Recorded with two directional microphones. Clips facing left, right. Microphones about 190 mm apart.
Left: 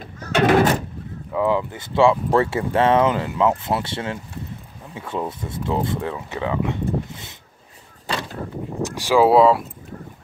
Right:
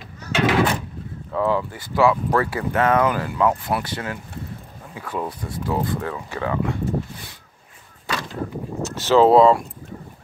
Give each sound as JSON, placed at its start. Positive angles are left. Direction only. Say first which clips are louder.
{"t": 0.3, "sound": "door", "louder": "left 3 dB", "side_deg": 50}
{"t": 1.3, "sound": "speech", "louder": "left 1 dB", "side_deg": 15}
{"t": 8.8, "sound": "speech", "louder": "right 1 dB", "side_deg": 10}